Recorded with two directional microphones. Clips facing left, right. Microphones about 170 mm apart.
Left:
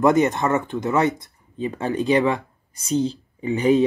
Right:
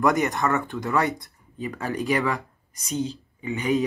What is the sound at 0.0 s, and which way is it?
Speech, 20° left (ahead or behind).